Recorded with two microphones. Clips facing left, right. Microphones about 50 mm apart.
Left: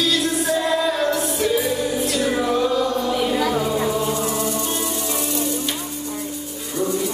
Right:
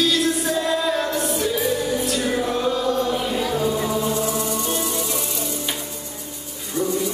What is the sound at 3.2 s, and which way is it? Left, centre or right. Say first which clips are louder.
Music: left 3 dB; left.